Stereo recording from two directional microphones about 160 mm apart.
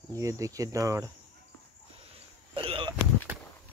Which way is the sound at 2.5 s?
35° right (ahead or behind).